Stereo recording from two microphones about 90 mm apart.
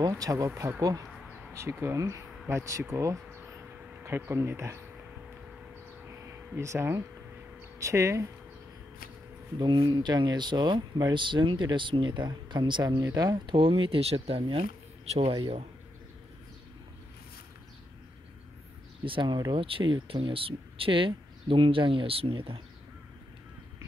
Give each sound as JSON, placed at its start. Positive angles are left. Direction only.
{"t": 0.0, "sound": "speech", "side_deg": -40}
{"t": 6.1, "sound": "a sound", "side_deg": -35}
{"t": 7.8, "sound": "speech", "side_deg": -35}
{"t": 9.6, "sound": "speech", "side_deg": -55}
{"t": 13.5, "sound": "speech", "side_deg": -70}
{"t": 15.3, "sound": "speech", "side_deg": -70}
{"t": 19.0, "sound": "speech", "side_deg": -65}